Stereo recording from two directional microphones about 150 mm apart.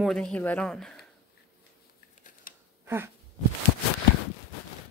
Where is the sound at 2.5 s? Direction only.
65° left (ahead or behind).